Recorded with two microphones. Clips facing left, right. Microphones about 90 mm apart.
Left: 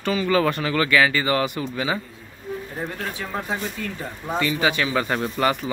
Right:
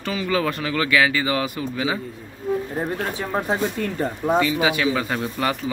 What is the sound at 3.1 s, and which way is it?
Speech, 30° right (ahead or behind).